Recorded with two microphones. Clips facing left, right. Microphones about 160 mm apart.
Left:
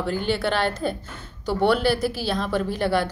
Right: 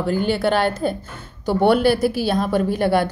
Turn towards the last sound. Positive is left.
turn(degrees=-50)  # may be behind; listen again after turning